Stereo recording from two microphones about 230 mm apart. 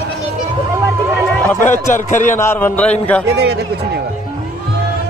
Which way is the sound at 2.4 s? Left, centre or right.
Centre.